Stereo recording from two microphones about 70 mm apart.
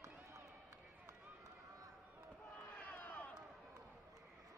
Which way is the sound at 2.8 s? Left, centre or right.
Left.